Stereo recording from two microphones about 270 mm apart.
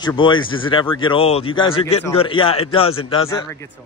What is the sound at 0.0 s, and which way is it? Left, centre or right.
Speech, centre.